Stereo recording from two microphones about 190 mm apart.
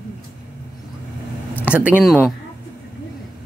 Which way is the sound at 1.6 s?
10° right (ahead or behind).